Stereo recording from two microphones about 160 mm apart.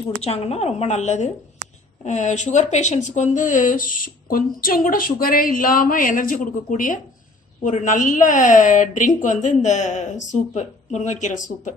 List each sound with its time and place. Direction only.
0.2 s a woman's voice: 40° left (ahead or behind)